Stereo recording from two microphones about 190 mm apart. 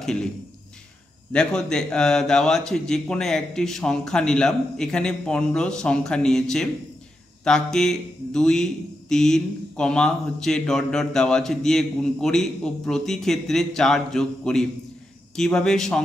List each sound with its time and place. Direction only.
0.0 s a man's voice: 5° left (ahead or behind)
1.3 s speech: 5° left (ahead or behind)